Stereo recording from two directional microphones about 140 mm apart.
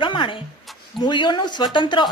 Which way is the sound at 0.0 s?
35° left (ahead or behind).